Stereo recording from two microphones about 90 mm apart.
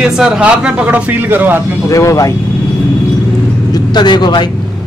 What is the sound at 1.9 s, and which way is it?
Speech, 35° left (ahead or behind).